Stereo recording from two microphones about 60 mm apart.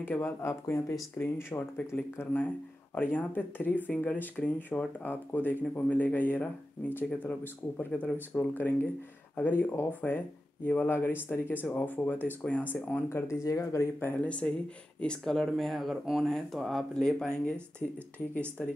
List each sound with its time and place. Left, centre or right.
0.0 s speech: left
0.4 s speech: left
1.2 s speech: left
2.9 s speech: left
8.5 s speech: left
13.1 s speech: left
13.9 s speech: left